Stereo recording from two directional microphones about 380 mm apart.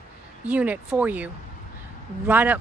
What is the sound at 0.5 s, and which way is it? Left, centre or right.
Speech, centre.